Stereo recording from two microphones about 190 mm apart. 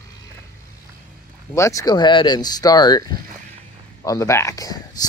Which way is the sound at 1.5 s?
15° left (ahead or behind).